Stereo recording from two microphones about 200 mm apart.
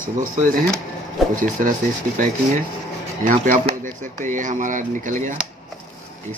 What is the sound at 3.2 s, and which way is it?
Speech, 40° right (ahead or behind).